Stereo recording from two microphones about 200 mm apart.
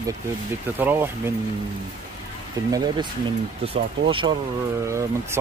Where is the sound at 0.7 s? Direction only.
10° right (ahead or behind).